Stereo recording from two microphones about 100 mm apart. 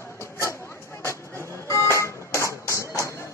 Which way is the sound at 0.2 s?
25° left (ahead or behind).